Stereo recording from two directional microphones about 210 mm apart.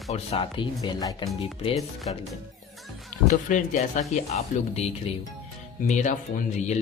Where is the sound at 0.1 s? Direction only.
25° left (ahead or behind).